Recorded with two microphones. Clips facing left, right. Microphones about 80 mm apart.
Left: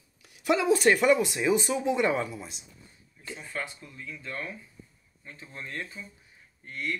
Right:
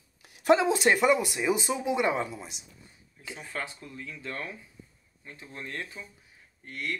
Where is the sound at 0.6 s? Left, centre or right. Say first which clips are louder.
Left 1 dB; right.